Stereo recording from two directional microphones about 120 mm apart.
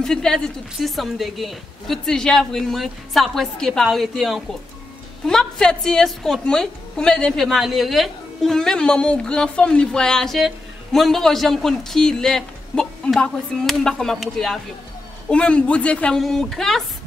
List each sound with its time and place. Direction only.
0.0 s a woman's voice: 5° left (ahead or behind)